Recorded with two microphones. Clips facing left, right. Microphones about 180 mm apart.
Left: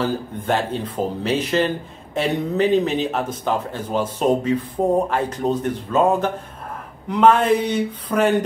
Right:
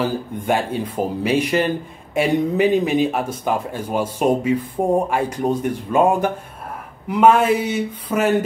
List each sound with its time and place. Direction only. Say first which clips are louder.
0.0 s speech: right 1 dB; 10° right (ahead or behind)